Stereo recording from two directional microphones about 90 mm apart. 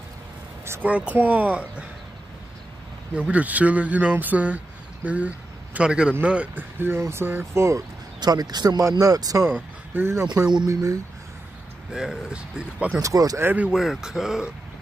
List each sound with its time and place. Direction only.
0.8 s speech: 15° right (ahead or behind)
3.2 s speech: 15° right (ahead or behind); by 7.8 s 30° right (ahead or behind)
8.2 s speech: 45° right (ahead or behind)
9.9 s speech: 30° right (ahead or behind)
10.2 s speech: 10° right (ahead or behind)
10.7 s speech: 40° right (ahead or behind)
11.9 s speech: 5° right (ahead or behind)
13.0 s speech: 40° right (ahead or behind)
13.4 s speech: 20° right (ahead or behind)
13.7 s speech: 5° right (ahead or behind)